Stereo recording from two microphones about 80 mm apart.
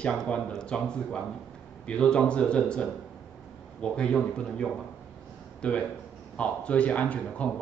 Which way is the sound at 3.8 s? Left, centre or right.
Centre.